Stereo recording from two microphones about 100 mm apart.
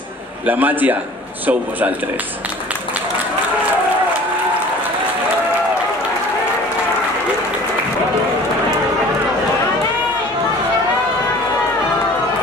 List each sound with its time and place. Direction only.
0.5 s a man's voice: 15° right (ahead or behind)